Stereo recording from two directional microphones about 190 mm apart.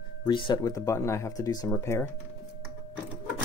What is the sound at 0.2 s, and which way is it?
Speech, 25° left (ahead or behind).